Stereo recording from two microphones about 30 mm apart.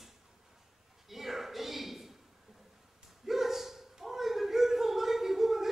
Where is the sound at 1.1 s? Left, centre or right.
Centre.